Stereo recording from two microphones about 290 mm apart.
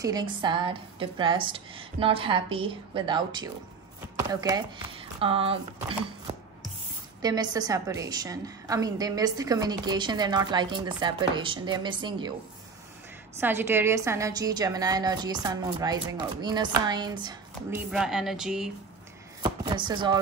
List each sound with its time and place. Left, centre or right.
0.0 s a woman's voice: centre
13.4 s a woman's voice: centre
19.4 s chopping: centre